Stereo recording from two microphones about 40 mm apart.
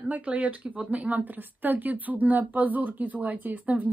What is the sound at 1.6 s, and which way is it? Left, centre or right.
Speech, right.